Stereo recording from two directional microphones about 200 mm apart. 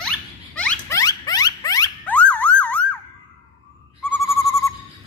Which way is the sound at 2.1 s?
5° left (ahead or behind).